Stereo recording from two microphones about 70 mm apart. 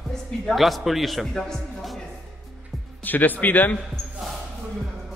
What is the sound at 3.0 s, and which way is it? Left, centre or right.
Speech, left.